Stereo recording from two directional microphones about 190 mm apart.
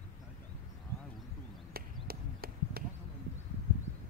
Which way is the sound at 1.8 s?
50° right (ahead or behind).